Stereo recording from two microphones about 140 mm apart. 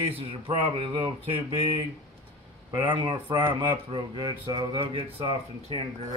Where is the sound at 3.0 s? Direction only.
35° right (ahead or behind).